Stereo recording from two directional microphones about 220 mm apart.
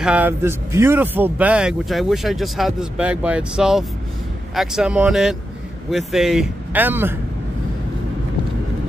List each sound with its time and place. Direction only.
0.0 s speech: 5° right (ahead or behind)